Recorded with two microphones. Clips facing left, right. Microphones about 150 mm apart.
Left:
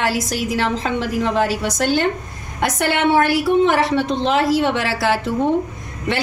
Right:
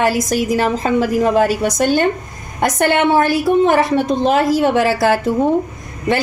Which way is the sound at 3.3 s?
45° right (ahead or behind).